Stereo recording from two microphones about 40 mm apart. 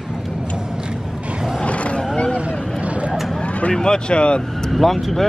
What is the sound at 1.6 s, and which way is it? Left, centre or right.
Vehicle, left.